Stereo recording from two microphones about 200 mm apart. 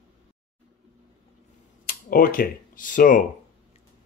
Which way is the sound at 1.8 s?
45° left (ahead or behind).